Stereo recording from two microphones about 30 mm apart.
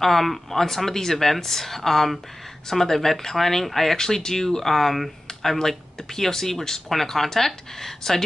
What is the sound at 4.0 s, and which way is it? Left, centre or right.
Speech, centre.